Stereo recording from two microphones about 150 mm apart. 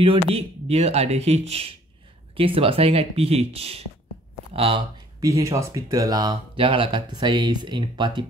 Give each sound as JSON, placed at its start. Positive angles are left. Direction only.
{"t": 0.0, "sound": "speech", "side_deg": -40}
{"t": 5.3, "sound": "speech", "side_deg": -20}